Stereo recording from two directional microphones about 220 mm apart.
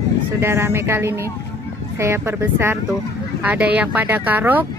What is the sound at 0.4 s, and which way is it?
Speech, 10° right (ahead or behind).